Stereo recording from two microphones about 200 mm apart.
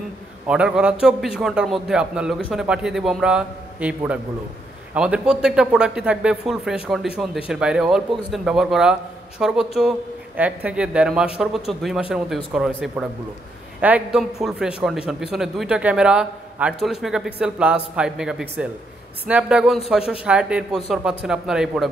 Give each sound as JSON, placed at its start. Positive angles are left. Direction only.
{"t": 0.5, "sound": "a man's voice", "side_deg": -5}